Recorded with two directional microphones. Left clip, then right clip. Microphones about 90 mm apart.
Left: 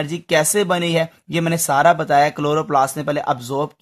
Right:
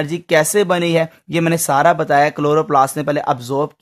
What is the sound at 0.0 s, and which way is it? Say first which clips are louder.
Speech: right 3 dB; 40° right (ahead or behind).